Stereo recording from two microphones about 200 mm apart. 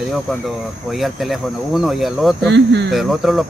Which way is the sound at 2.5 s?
60° right (ahead or behind).